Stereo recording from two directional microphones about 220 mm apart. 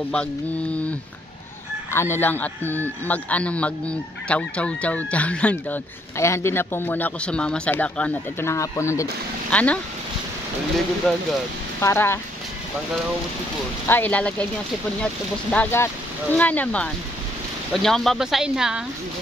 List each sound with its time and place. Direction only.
0.1 s speech: 5° left (ahead or behind)
11.1 s speech: centre (ahead or behind)
13.8 s speech: 10° left (ahead or behind)
15.5 s speech: 10° left (ahead or behind)